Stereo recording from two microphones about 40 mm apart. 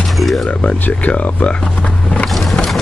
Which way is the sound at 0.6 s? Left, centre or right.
Left.